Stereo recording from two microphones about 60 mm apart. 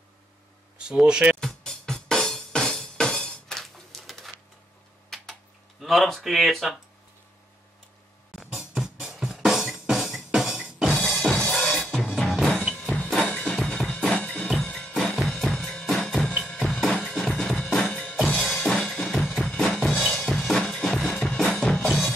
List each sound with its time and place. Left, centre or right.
0.7 s speech: centre
1.4 s music: centre
5.8 s speech: centre
8.4 s music: centre
10.9 s music: centre
11.8 s drum kit: centre
13.3 s music: centre
13.7 s drum kit: centre
15.0 s drum kit: centre
16.3 s drum: centre
17.0 s drum kit: centre
19.6 s drum: centre